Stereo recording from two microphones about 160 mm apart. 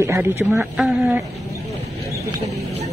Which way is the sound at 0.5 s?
Centre (ahead or behind).